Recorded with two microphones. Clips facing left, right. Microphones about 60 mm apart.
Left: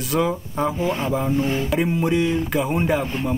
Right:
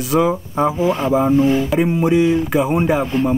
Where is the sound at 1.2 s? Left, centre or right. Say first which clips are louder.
Right 10 dB; centre.